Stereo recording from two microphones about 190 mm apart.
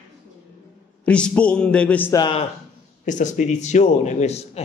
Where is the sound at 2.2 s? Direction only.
25° left (ahead or behind).